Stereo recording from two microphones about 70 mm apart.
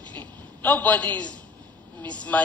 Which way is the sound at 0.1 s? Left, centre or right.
Left.